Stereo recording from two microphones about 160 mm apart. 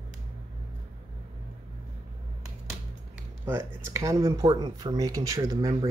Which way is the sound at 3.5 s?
15° right (ahead or behind).